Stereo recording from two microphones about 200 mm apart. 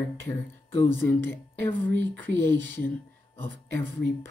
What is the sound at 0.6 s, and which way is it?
Speech, 10° left (ahead or behind).